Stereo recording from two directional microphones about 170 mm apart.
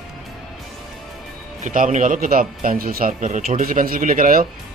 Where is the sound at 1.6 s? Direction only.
45° right (ahead or behind).